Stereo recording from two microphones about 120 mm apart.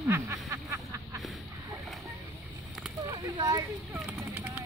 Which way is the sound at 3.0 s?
30° right (ahead or behind).